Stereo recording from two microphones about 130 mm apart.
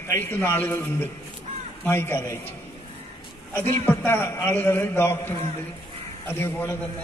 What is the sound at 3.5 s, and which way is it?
A man's voice, 15° left (ahead or behind).